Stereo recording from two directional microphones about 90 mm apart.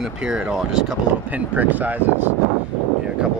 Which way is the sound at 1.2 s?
15° right (ahead or behind).